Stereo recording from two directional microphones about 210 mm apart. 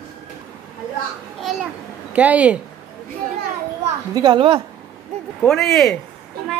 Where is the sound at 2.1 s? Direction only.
5° right (ahead or behind).